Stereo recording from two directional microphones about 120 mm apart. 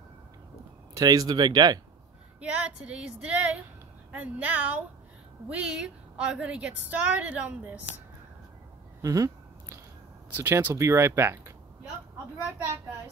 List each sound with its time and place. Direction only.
0.9 s speech: 30° right (ahead or behind)
2.4 s a woman's voice: 10° right (ahead or behind)
9.0 s a sound: 30° right (ahead or behind)
10.3 s speech: 20° right (ahead or behind)